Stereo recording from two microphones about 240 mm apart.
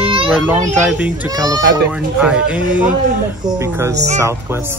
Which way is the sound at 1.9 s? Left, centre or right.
Centre.